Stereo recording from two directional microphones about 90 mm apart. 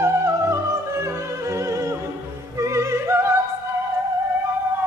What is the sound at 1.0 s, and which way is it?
Opera, 35° right (ahead or behind).